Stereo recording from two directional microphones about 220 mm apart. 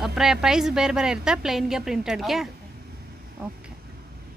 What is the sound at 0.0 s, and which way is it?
A woman's voice, centre (ahead or behind).